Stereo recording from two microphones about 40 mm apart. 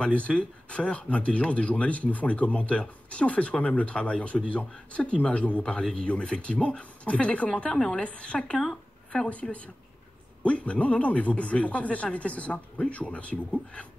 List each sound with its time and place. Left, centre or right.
0.0 s a man's voice: left
7.5 s speech: left
8.0 s speech: left
9.3 s a man's voice: left